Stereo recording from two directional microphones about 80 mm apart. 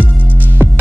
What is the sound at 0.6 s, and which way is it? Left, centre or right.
Music, right.